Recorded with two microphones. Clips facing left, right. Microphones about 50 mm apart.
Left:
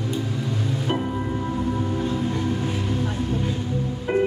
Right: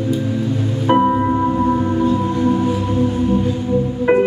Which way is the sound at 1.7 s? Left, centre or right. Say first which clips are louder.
Right 9 dB; right.